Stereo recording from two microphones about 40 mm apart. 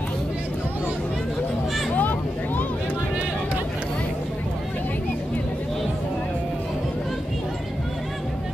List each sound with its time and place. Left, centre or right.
2.0 s vehicle: left